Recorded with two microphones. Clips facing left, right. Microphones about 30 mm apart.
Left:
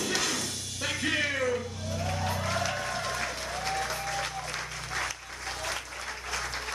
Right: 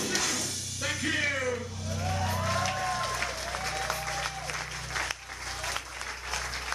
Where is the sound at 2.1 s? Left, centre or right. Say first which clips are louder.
Right 1 dB; centre.